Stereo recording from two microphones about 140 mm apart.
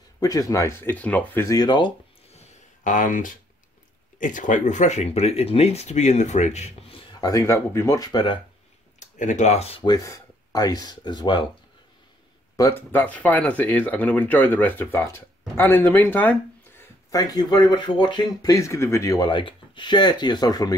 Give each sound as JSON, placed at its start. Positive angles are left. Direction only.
{"t": 0.2, "sound": "speech", "side_deg": 25}
{"t": 2.3, "sound": "a sound", "side_deg": 70}
{"t": 4.2, "sound": "speech", "side_deg": 70}
{"t": 7.1, "sound": "speech", "side_deg": 25}
{"t": 9.0, "sound": "speech", "side_deg": 60}
{"t": 9.8, "sound": "speech", "side_deg": 25}
{"t": 12.5, "sound": "speech", "side_deg": 15}
{"t": 17.1, "sound": "speech", "side_deg": 25}